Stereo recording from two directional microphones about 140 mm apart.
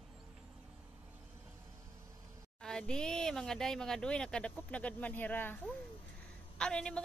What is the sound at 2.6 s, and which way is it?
Speech, 5° left (ahead or behind).